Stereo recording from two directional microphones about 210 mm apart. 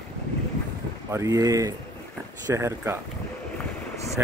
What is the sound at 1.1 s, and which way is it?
Speech, 15° right (ahead or behind).